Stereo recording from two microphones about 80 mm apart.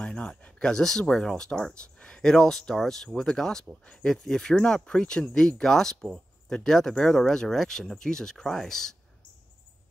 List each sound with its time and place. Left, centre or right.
0.0 s speech: centre